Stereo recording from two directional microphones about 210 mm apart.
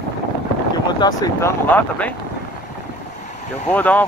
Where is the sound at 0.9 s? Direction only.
20° left (ahead or behind).